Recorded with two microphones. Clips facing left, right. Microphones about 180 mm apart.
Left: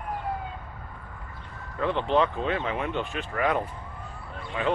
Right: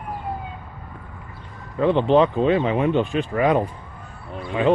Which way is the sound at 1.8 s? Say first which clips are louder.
Right 8 dB; 25° right (ahead or behind).